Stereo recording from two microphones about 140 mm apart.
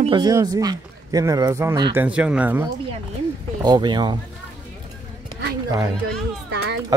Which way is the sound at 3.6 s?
30° right (ahead or behind).